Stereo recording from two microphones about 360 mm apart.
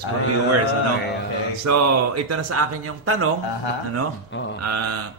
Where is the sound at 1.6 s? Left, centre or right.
Right.